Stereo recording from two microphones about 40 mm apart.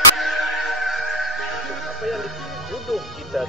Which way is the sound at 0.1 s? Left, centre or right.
Centre.